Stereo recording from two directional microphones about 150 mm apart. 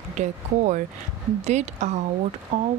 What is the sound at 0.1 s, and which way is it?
Speech, 50° right (ahead or behind).